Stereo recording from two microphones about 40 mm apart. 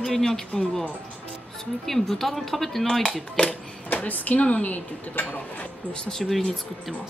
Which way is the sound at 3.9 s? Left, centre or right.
Left.